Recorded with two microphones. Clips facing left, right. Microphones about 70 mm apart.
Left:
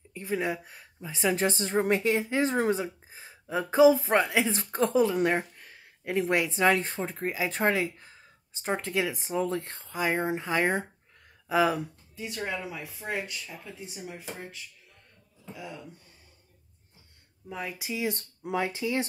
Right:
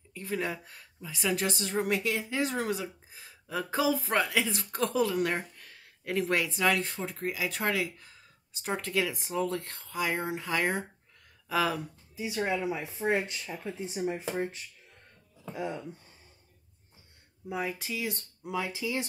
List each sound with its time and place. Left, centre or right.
0.1 s speech: centre
12.2 s speech: centre; by 15.8 s right
17.5 s speech: centre
17.7 s speech: centre
18.1 s speech: left